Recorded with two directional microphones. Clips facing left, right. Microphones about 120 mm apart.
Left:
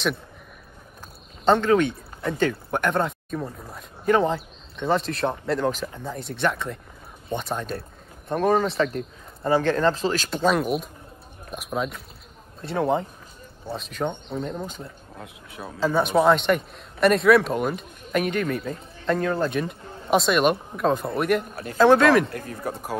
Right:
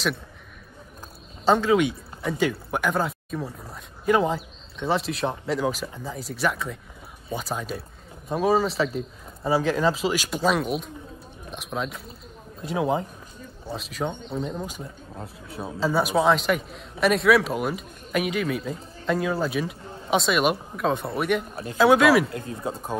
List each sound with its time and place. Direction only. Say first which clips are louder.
1.4 s speech: left 1 dB; 5° right (ahead or behind)
15.1 s speech: right 5 dB; 35° right (ahead or behind)
15.6 s speech: left 1 dB; 5° right (ahead or behind)
22.3 s speech: even; 25° right (ahead or behind)